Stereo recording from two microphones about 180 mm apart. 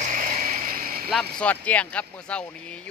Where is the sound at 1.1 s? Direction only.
5° left (ahead or behind).